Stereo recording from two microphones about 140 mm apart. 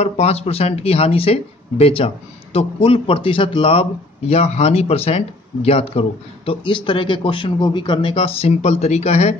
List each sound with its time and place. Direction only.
0.0 s speech: 45° left (ahead or behind)